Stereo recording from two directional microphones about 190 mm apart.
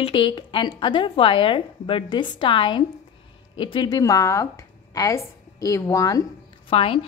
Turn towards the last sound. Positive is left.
turn(degrees=30)  # may be behind; listen again after turning